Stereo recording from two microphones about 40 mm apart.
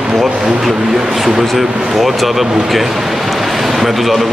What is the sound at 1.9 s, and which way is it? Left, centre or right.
A man's voice, centre.